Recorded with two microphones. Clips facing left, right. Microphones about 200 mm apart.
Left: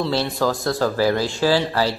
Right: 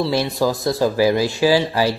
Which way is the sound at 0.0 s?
10° right (ahead or behind).